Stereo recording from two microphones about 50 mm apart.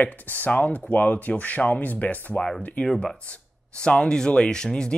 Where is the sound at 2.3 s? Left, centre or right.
Centre.